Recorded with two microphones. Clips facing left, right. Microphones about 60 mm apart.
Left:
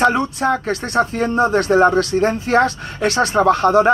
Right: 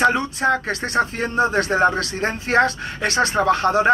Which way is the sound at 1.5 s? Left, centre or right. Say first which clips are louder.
Left 4 dB; right.